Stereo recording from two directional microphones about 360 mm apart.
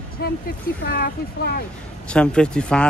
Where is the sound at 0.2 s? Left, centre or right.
Left.